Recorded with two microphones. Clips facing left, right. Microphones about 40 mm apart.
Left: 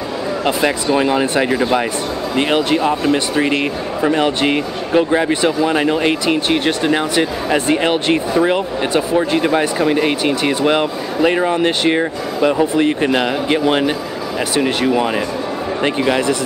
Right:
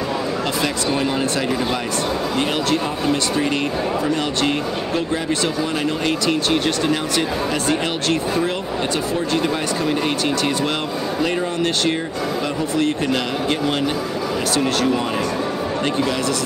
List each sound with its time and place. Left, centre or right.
0.9 s speech: left